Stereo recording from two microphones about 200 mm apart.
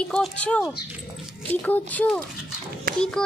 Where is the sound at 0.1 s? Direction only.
5° left (ahead or behind).